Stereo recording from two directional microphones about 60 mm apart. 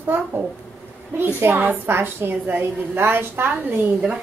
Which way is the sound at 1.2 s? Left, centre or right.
Right.